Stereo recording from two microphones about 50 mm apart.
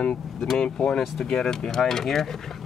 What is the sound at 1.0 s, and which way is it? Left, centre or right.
Speech, centre.